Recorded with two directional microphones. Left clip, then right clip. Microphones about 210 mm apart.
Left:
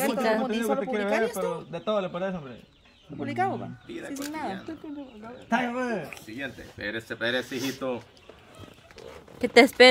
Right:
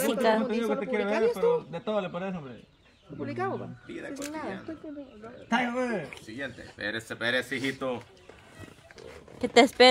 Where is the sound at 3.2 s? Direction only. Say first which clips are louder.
Left 5 dB; 55° left (ahead or behind).